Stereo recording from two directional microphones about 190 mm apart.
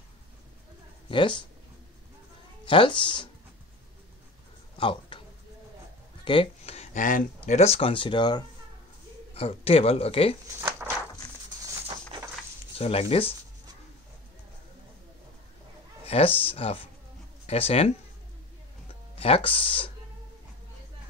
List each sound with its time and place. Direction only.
1.0 s speech: 25° left (ahead or behind)
2.6 s speech: 25° left (ahead or behind)
4.7 s a sound: 25° left (ahead or behind)
6.2 s speech: 30° left (ahead or behind)
10.8 s a sound: 5° right (ahead or behind)
12.7 s speech: 30° left (ahead or behind)
16.3 s speech: 30° left (ahead or behind)
19.1 s speech: 30° left (ahead or behind)